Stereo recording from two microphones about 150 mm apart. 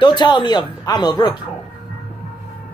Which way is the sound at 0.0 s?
30° left (ahead or behind).